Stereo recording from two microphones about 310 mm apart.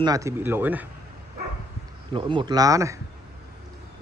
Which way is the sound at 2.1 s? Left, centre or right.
Centre.